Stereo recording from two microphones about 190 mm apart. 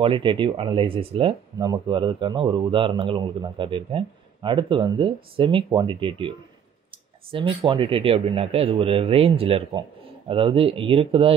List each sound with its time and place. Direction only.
0.0 s speech: 25° right (ahead or behind)